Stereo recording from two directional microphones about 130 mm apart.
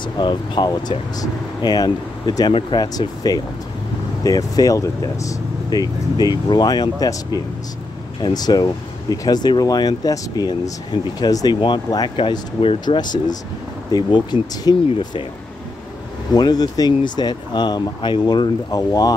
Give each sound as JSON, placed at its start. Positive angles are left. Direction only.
{"t": 0.2, "sound": "speech", "side_deg": 35}
{"t": 16.3, "sound": "speech", "side_deg": 30}